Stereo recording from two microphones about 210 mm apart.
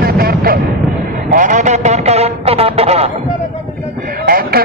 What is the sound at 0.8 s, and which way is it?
Vehicle, 35° right (ahead or behind).